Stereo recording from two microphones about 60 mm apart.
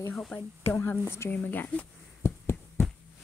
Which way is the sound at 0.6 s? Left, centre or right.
Left.